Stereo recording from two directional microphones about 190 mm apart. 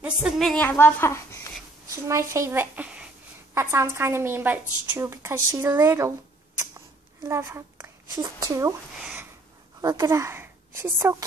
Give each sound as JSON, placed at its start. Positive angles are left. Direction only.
{"t": 0.0, "sound": "a woman's voice", "side_deg": -5}
{"t": 2.0, "sound": "a woman's voice", "side_deg": -15}
{"t": 7.2, "sound": "speech", "side_deg": -15}
{"t": 9.0, "sound": "a sound", "side_deg": -10}
{"t": 9.8, "sound": "a woman's voice", "side_deg": -20}